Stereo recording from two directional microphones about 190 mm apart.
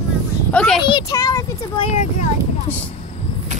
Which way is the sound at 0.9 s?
20° left (ahead or behind).